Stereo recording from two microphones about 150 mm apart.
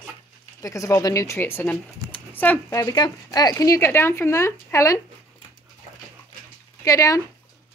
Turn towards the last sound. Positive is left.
turn(degrees=20)  # may be behind; listen again after turning